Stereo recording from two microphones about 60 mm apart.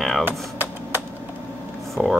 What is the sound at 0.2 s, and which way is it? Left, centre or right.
Typing, right.